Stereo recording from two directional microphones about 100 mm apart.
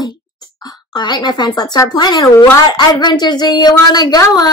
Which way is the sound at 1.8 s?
45° left (ahead or behind).